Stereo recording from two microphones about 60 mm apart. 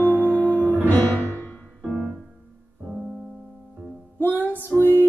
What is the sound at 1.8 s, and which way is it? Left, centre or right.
Piano, centre.